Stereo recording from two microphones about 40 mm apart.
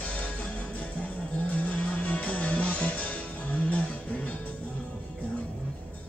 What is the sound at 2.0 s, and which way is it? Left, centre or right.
Music, left.